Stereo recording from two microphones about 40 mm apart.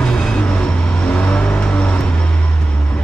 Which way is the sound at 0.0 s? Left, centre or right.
Left.